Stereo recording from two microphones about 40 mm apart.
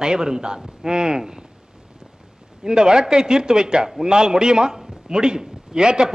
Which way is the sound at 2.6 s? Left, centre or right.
Centre.